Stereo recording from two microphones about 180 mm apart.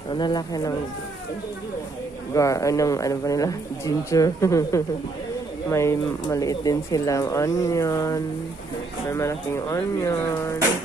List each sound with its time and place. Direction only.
0.1 s speech: 25° left (ahead or behind)
2.3 s speech: 15° left (ahead or behind)